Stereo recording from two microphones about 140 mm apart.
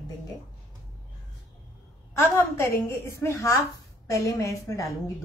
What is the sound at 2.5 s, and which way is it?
A woman's voice, 20° left (ahead or behind).